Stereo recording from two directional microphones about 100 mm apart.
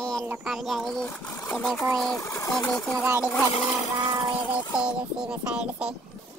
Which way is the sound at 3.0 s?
20° right (ahead or behind).